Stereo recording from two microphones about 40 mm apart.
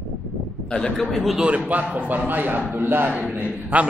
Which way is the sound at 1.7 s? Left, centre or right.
Right.